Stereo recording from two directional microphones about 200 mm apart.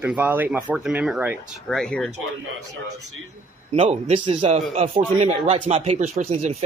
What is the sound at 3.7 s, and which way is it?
Speech, 30° right (ahead or behind).